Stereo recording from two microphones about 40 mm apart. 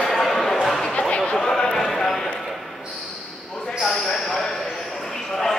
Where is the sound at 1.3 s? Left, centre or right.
Centre.